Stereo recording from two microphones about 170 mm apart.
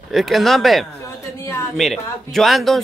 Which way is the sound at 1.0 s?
15° left (ahead or behind).